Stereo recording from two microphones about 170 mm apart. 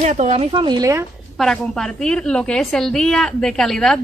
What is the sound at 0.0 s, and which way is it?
Speech, 40° right (ahead or behind).